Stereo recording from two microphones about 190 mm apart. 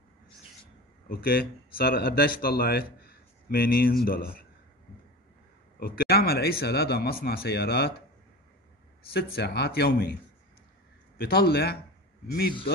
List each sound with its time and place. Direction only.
1.0 s speech: 50° left (ahead or behind)
5.8 s speech: 50° left (ahead or behind)
9.1 s speech: 55° left (ahead or behind)
11.1 s speech: 55° left (ahead or behind)